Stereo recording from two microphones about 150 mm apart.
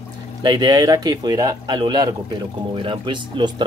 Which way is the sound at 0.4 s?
30° right (ahead or behind).